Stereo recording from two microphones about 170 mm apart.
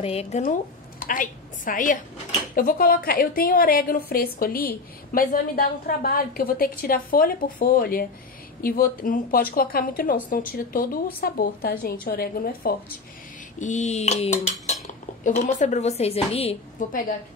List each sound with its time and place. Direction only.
0.0 s speech: 35° left (ahead or behind)
0.4 s a woman's voice: 55° left (ahead or behind)
13.6 s dishes: 45° left (ahead or behind)
16.8 s dishes: 50° left (ahead or behind)